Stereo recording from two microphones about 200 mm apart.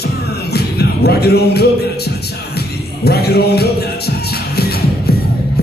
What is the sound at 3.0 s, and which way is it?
Music, 55° left (ahead or behind).